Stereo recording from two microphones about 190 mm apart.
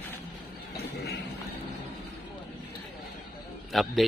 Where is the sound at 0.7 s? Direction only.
55° left (ahead or behind).